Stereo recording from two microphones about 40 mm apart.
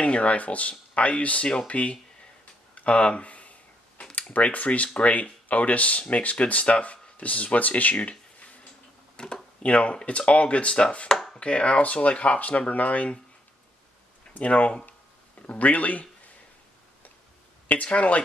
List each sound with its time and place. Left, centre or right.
0.0 s speech: left
2.7 s a sound: left
4.3 s speech: left
9.1 s a sound: left
9.7 s speech: left
14.4 s speech: left
17.9 s speech: left